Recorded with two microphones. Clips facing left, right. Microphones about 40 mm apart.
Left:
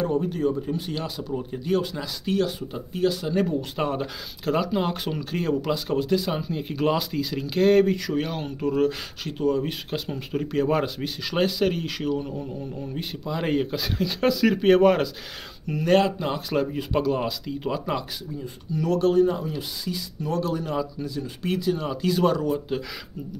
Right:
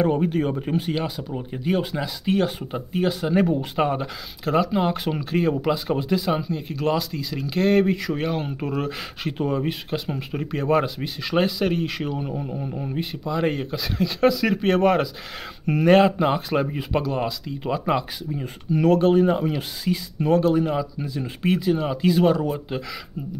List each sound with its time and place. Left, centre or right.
0.0 s speech: right; by 3.9 s centre
3.9 s speech: centre
6.5 s speech: centre
8.5 s speech: centre
9.7 s speech: centre
12.0 s speech: centre
12.3 s speech: right
12.9 s speech: centre
15.9 s speech: right
17.0 s speech: centre
18.7 s speech: right
18.9 s speech: right
19.2 s speech: right; by 22.8 s centre